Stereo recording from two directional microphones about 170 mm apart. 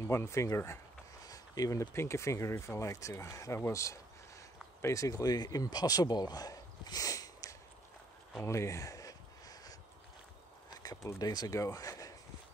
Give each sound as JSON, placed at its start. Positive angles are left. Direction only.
{"t": 0.0, "sound": "speech", "side_deg": 15}
{"t": 8.4, "sound": "a sound", "side_deg": 15}
{"t": 11.1, "sound": "speech", "side_deg": 20}